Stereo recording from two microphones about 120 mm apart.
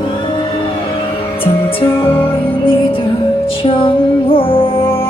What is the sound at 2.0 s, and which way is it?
Music, 45° left (ahead or behind).